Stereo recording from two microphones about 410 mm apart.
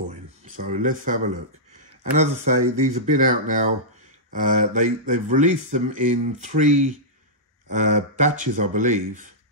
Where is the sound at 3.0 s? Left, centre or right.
Centre.